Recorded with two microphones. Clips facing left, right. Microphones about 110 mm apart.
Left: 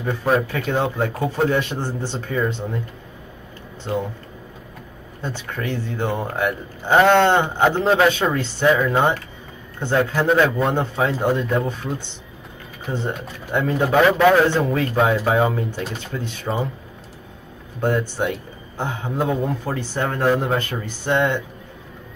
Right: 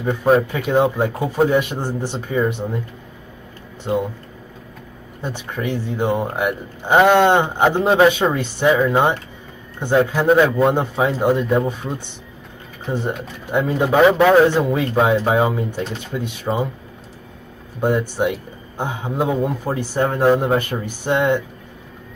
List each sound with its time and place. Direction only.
0.0 s a man's voice: 15° right (ahead or behind)
3.8 s a man's voice: 15° right (ahead or behind)
5.2 s a man's voice: 15° right (ahead or behind)
12.9 s a man's voice: 5° right (ahead or behind)
17.7 s a man's voice: 15° right (ahead or behind)